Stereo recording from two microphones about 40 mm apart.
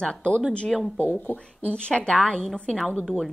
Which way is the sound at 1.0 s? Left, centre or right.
Left.